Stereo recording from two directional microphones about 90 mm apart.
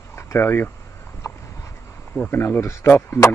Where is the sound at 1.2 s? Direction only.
30° left (ahead or behind).